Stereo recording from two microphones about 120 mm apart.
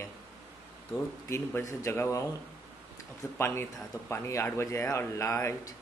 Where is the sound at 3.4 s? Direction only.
20° left (ahead or behind).